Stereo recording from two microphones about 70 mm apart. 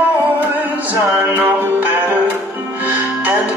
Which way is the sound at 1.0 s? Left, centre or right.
Right.